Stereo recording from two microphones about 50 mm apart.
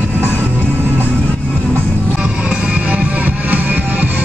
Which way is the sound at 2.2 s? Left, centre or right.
Right.